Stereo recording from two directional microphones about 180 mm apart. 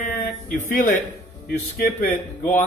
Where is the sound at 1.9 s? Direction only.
45° left (ahead or behind).